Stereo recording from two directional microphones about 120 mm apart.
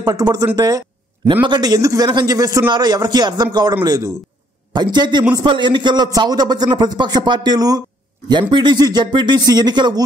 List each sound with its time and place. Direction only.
0.0 s a man's voice: 35° right (ahead or behind)
0.6 s a sound: 30° right (ahead or behind)
1.3 s a man's voice: 40° right (ahead or behind)